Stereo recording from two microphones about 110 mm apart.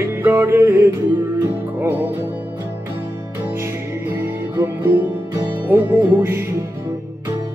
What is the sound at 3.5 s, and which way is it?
Music, 20° right (ahead or behind).